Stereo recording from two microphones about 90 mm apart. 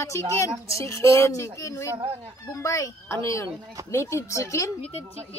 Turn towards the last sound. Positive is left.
turn(degrees=35)  # may be behind; listen again after turning